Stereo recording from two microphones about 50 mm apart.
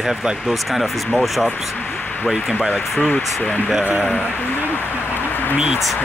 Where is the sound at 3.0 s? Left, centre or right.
Left.